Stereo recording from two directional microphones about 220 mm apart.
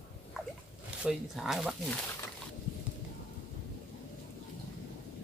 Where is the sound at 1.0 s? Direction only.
Centre (ahead or behind).